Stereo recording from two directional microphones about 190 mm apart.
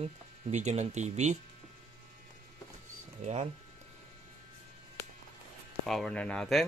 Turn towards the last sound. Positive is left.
turn(degrees=5)  # may be behind; listen again after turning